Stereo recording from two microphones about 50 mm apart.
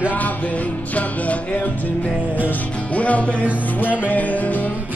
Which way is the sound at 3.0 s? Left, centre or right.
Left.